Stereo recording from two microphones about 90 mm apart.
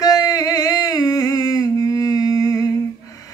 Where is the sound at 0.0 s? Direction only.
45° left (ahead or behind).